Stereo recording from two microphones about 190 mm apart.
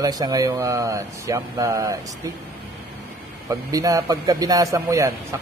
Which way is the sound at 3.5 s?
15° right (ahead or behind).